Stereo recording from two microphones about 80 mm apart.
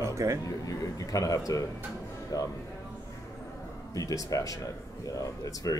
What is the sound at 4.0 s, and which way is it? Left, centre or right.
Speech, left.